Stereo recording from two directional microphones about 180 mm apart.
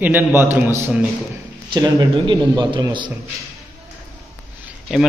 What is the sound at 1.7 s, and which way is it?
A man's voice, 25° right (ahead or behind).